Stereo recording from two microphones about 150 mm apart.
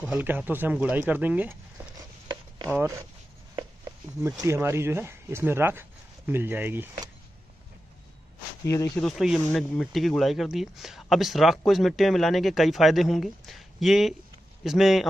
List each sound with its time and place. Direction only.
0.1 s speech: 10° right (ahead or behind)
4.4 s speech: 15° right (ahead or behind)
8.6 s speech: 20° left (ahead or behind)
9.0 s speech: centre (ahead or behind)